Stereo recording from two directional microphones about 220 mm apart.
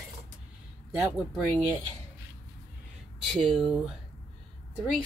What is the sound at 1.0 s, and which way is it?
Speech, centre (ahead or behind).